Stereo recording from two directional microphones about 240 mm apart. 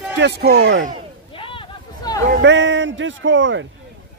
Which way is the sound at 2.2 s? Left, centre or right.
Right.